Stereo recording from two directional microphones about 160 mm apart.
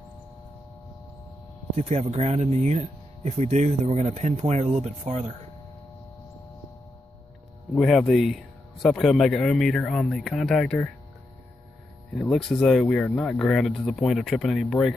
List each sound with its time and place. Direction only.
1.8 s speech: 45° right (ahead or behind)
7.7 s speech: centre (ahead or behind)
12.2 s speech: centre (ahead or behind)